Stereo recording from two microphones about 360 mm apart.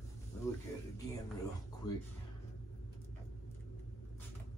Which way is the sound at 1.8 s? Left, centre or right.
Centre.